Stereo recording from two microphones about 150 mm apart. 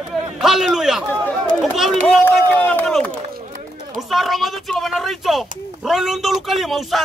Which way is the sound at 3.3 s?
60° right (ahead or behind).